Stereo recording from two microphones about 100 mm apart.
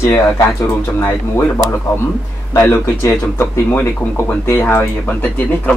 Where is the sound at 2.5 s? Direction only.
25° left (ahead or behind).